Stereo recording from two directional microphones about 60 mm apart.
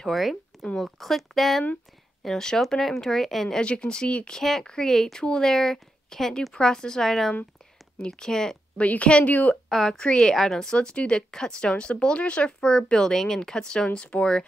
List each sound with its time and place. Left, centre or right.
0.0 s a woman's voice: centre
8.7 s a woman's voice: left
9.7 s a woman's voice: centre